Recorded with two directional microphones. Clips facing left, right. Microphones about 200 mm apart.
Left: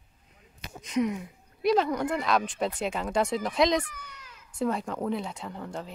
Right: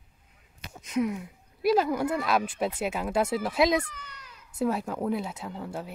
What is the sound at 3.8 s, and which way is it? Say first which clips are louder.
Speech: even; 10° left (ahead or behind).